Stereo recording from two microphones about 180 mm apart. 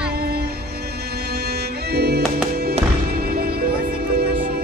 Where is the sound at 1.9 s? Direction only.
60° right (ahead or behind).